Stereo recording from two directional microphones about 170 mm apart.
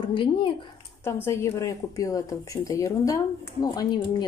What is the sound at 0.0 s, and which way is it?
Speech, 30° left (ahead or behind).